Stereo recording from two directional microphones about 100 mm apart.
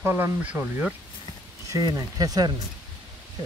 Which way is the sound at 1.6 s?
35° right (ahead or behind).